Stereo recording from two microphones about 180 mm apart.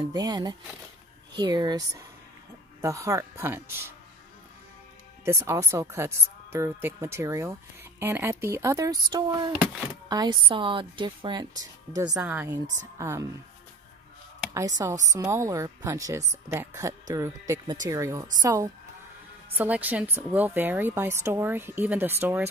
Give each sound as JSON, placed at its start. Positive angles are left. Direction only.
{"t": 0.0, "sound": "a woman's voice", "side_deg": -20}
{"t": 5.2, "sound": "a woman's voice", "side_deg": -15}
{"t": 12.1, "sound": "a woman's voice", "side_deg": -10}
{"t": 14.8, "sound": "a woman's voice", "side_deg": -20}